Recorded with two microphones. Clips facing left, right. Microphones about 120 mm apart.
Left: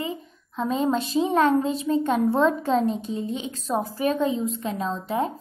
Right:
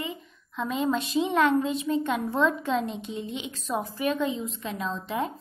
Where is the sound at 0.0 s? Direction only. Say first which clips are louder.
Left 4 dB; 35° left (ahead or behind).